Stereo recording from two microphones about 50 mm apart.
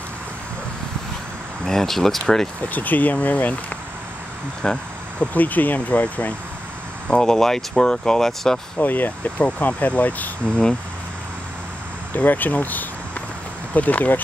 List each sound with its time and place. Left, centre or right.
1.7 s speech: centre
2.7 s speech: left
4.6 s speech: centre
5.2 s speech: left
7.1 s speech: centre
8.7 s speech: left
10.5 s speech: centre
12.1 s speech: left